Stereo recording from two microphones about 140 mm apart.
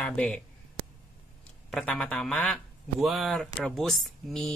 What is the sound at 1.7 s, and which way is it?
Speech, 5° left (ahead or behind).